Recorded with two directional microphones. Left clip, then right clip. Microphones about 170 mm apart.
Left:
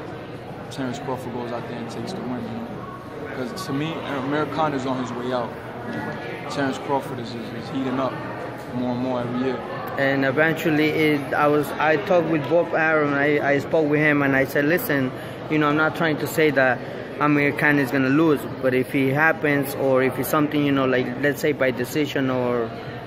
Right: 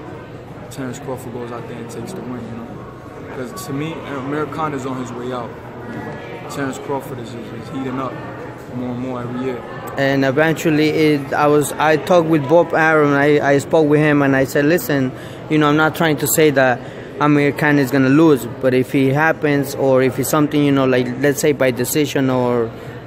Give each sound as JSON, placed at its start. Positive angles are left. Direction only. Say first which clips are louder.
{"t": 3.8, "sound": "speech", "louder": "right 2 dB", "side_deg": 0}
{"t": 6.5, "sound": "speech", "louder": "right 1 dB", "side_deg": -5}
{"t": 9.1, "sound": "speech", "louder": "right 1 dB", "side_deg": 0}
{"t": 9.9, "sound": "a man's voice", "louder": "right 5 dB", "side_deg": -40}